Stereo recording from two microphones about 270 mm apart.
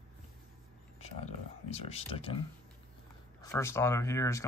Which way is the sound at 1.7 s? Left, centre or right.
Left.